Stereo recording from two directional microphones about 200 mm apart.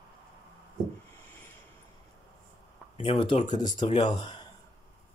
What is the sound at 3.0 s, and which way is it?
Speech, 25° left (ahead or behind).